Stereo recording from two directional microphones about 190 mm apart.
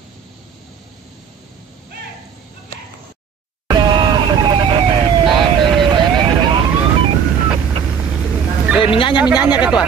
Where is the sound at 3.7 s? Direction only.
25° right (ahead or behind).